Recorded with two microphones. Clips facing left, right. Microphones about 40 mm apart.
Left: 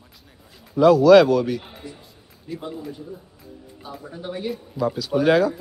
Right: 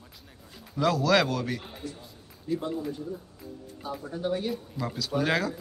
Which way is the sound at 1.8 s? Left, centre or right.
Centre.